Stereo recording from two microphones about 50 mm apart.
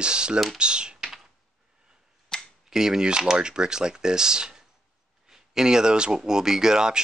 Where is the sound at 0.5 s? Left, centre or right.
Centre.